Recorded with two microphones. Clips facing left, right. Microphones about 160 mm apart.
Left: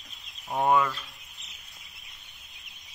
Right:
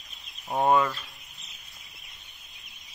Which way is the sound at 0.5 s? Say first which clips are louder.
Right 1 dB; 20° right (ahead or behind).